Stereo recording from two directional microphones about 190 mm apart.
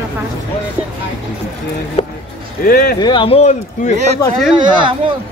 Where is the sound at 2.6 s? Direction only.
50° left (ahead or behind).